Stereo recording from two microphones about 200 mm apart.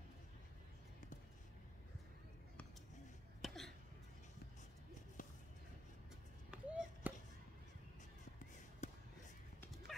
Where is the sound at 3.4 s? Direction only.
Centre (ahead or behind).